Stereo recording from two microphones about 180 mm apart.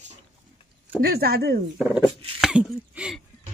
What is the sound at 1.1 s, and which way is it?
Speech, 60° right (ahead or behind).